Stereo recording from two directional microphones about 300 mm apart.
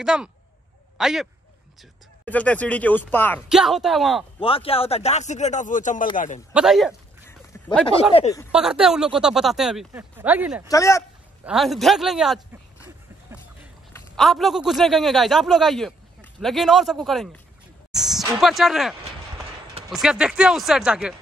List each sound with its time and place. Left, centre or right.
0.0 s speech: centre
4.4 s speech: centre
6.5 s a sound: centre
7.8 s speech: centre
8.5 s speech: centre
10.7 s speech: centre
11.4 s speech: centre
12.8 s a sound: centre
13.9 s a man's voice: centre
17.9 s a sound: centre
18.4 s speech: centre